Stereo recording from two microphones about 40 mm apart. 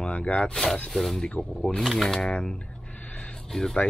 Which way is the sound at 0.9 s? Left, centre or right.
Centre.